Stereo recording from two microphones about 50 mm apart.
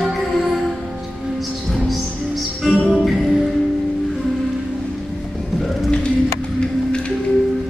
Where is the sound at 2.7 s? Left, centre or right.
Left.